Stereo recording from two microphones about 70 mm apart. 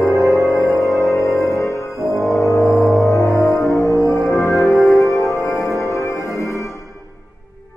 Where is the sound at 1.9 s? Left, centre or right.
Right.